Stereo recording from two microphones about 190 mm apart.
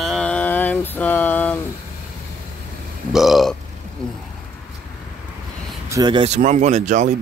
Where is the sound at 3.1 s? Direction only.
Centre (ahead or behind).